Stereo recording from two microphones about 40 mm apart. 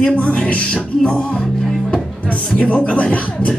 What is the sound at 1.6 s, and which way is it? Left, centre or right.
Speech, centre.